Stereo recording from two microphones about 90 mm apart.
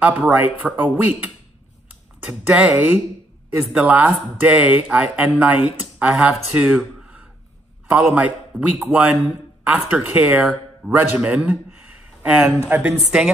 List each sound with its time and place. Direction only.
0.3 s speech: 20° right (ahead or behind)
10.9 s speech: 20° right (ahead or behind)
12.8 s speech: 5° right (ahead or behind)